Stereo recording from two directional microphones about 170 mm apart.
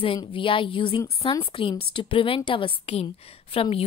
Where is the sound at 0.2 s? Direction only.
30° left (ahead or behind).